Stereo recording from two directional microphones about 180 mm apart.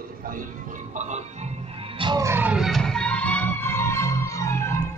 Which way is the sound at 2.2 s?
10° right (ahead or behind).